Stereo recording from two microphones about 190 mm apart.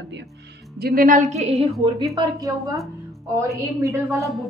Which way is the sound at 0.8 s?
50° right (ahead or behind).